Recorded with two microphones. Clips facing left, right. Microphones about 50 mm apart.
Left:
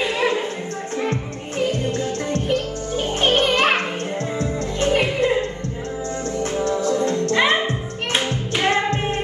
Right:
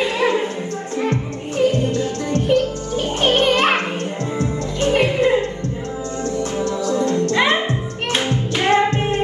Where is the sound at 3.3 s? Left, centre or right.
Right.